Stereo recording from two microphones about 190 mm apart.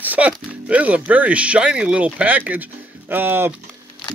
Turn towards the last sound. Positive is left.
turn(degrees=-10)  # may be behind; listen again after turning